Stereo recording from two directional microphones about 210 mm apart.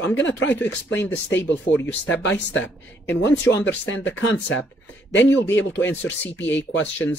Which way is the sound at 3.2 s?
60° left (ahead or behind).